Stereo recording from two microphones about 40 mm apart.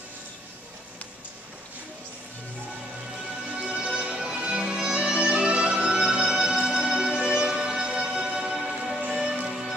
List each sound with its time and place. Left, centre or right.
3.5 s music: centre